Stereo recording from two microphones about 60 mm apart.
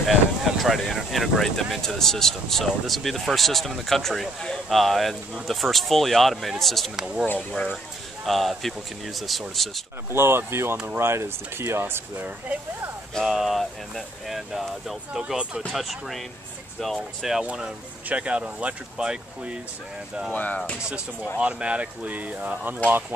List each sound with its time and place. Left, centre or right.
0.0 s speech: centre
7.0 s speech: centre
7.3 s speech: centre
8.3 s speech: centre
10.1 s speech: right
13.2 s speech: centre
18.0 s speech: right
20.3 s speech: left
21.4 s speech: centre